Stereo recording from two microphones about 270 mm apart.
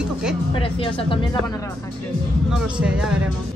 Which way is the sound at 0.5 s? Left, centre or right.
Centre.